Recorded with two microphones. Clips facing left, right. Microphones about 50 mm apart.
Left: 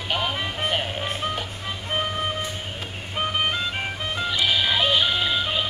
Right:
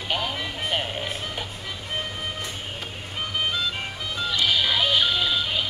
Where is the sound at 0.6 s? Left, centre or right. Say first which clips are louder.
Left 1 dB; centre.